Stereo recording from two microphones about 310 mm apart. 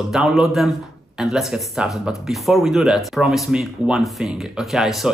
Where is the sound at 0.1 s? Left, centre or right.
Centre.